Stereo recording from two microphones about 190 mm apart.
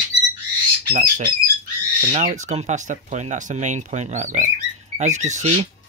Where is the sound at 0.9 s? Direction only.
45° right (ahead or behind).